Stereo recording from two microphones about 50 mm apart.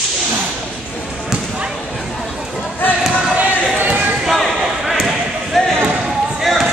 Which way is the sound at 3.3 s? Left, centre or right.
Right.